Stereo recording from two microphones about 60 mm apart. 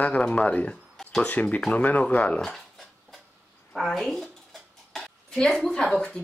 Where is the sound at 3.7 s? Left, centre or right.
Centre.